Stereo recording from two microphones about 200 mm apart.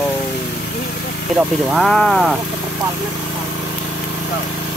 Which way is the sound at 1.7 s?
Centre (ahead or behind).